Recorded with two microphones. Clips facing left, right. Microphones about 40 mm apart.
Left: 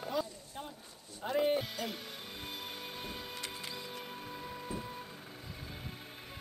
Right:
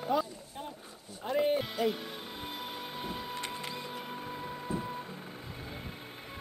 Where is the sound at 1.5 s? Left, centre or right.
Centre.